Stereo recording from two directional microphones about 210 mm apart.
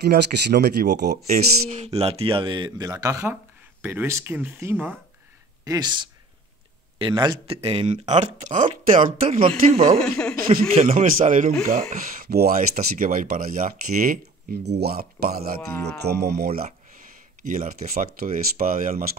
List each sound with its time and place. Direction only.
0.0 s speech: 50° right (ahead or behind)
1.3 s speech: 30° right (ahead or behind); by 4.9 s 10° right (ahead or behind)
7.0 s speech: 20° right (ahead or behind)
9.9 s speech: 5° left (ahead or behind)
10.7 s speech: 30° right (ahead or behind)